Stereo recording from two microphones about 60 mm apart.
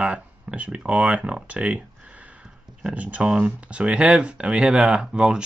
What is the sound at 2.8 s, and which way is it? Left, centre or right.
Speech, right.